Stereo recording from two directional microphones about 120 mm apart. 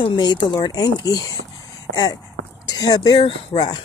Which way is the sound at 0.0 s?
40° left (ahead or behind).